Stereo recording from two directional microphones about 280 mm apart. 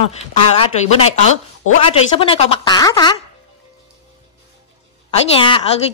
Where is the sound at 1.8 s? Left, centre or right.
Centre.